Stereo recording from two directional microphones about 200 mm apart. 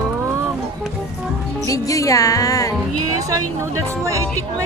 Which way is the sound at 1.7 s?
15° left (ahead or behind).